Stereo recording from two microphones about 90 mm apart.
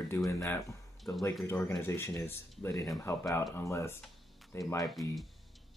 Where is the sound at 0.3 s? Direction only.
35° left (ahead or behind).